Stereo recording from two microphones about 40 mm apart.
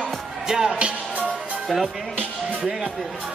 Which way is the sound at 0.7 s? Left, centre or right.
Right.